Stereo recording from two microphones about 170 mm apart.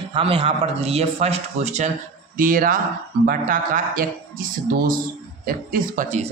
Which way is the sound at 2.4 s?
55° right (ahead or behind).